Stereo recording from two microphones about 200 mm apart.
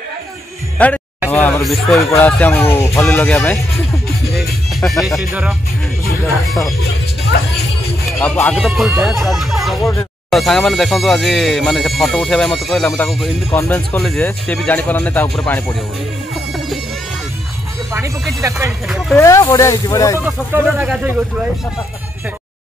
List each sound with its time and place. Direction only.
0.7 s music: 5° left (ahead or behind)
1.3 s speech: 5° left (ahead or behind)
2.0 s speech: 10° left (ahead or behind); by 5.6 s 5° right (ahead or behind)
8.2 s speech: 5° left (ahead or behind)
9.8 s speech: 15° left (ahead or behind)
10.3 s speech: centre (ahead or behind)
16.5 s music: centre (ahead or behind)
17.9 s speech: 15° right (ahead or behind)
18.9 s speech: centre (ahead or behind)
19.1 s speech: 15° left (ahead or behind)
20.2 s speech: 10° right (ahead or behind)